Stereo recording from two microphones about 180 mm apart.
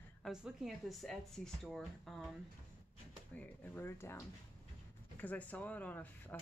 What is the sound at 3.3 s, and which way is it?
Speech, 10° left (ahead or behind).